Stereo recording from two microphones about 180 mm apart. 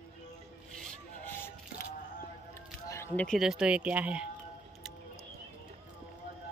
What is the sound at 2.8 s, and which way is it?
Speech, 15° left (ahead or behind).